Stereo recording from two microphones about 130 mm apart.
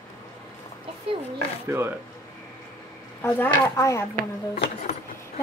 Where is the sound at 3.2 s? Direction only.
15° left (ahead or behind).